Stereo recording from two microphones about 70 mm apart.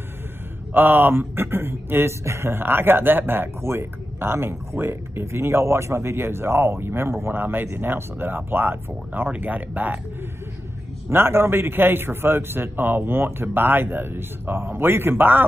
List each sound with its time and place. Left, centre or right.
0.7 s speech: right
11.1 s speech: right